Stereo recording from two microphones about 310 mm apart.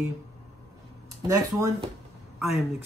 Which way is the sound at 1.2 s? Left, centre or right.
Centre.